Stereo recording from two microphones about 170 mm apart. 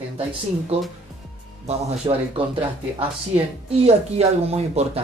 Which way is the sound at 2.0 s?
25° right (ahead or behind).